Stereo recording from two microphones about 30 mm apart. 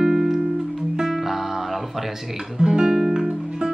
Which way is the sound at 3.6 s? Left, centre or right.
Right.